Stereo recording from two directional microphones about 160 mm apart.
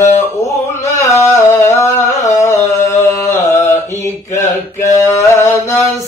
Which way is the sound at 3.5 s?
15° left (ahead or behind).